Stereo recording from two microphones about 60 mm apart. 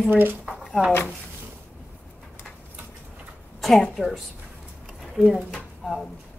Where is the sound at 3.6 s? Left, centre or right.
Centre.